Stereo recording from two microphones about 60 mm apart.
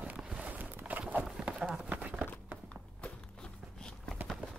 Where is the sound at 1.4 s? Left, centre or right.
Centre.